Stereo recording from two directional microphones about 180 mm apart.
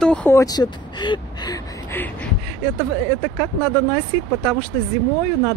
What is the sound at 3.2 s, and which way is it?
Speech, 10° left (ahead or behind).